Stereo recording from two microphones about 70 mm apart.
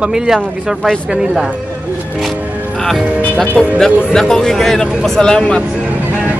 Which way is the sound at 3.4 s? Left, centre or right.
Centre.